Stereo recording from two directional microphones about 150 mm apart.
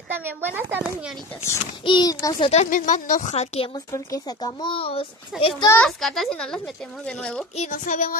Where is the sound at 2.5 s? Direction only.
55° left (ahead or behind).